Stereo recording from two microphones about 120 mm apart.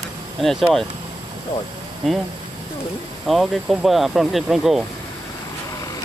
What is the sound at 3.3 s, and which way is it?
Speech, centre (ahead or behind).